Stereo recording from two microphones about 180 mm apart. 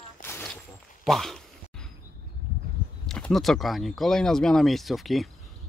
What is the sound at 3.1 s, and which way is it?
Speech, centre (ahead or behind).